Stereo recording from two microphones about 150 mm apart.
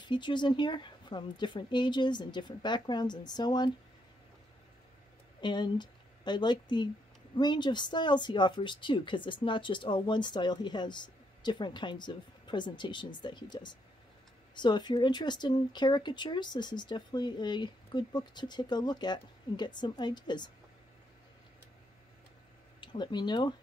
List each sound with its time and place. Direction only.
0.0 s speech: 30° left (ahead or behind)
5.4 s a woman's voice: 30° left (ahead or behind)
22.8 s speech: 30° left (ahead or behind)